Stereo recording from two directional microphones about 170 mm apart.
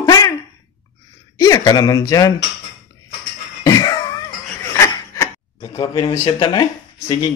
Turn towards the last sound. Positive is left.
turn(degrees=25)  # may be behind; listen again after turning